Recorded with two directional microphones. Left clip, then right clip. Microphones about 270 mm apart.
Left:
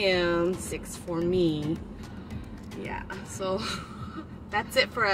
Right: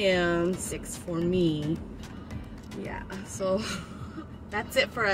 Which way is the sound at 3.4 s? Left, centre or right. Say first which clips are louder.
Right 2 dB; centre.